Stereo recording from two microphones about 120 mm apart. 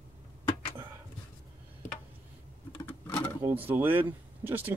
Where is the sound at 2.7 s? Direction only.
15° left (ahead or behind).